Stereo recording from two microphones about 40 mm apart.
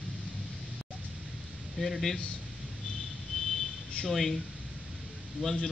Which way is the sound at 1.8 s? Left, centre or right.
Centre.